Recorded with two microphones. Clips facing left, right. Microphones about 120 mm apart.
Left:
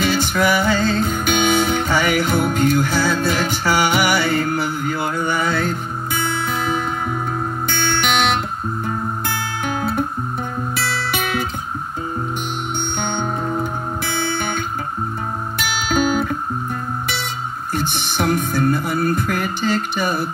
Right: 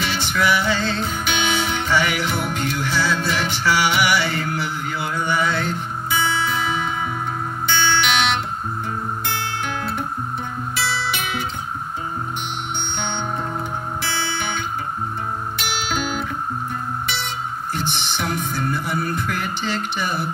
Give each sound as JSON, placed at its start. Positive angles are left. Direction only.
{"t": 0.0, "sound": "music", "side_deg": 45}
{"t": 13.0, "sound": "music", "side_deg": 45}
{"t": 17.7, "sound": "music", "side_deg": 50}